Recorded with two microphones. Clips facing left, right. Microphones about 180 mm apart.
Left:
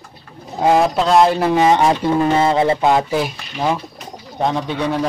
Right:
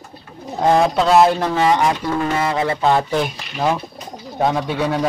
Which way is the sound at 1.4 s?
20° left (ahead or behind).